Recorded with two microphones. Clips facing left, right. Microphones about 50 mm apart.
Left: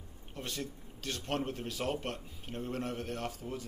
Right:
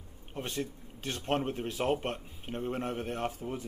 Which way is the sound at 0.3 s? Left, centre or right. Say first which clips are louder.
Right 4 dB; right.